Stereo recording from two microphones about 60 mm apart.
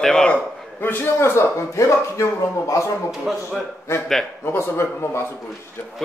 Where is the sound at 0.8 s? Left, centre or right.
Left.